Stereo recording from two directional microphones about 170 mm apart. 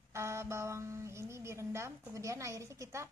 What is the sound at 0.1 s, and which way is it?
A woman's voice, 15° right (ahead or behind).